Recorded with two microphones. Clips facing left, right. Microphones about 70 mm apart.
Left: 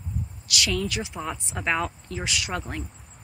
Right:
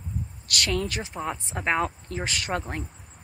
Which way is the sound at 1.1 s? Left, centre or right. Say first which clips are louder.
Right 1 dB; right.